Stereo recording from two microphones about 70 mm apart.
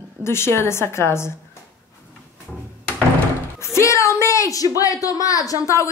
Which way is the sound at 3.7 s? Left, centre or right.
Left.